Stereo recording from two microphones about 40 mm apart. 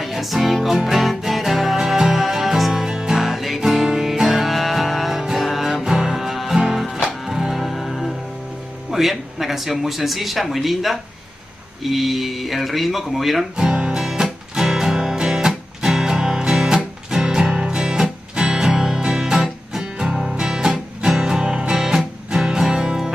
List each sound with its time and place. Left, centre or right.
0.0 s music: centre
2.9 s music: centre
8.9 s music: centre
9.4 s speech: centre
13.6 s music: centre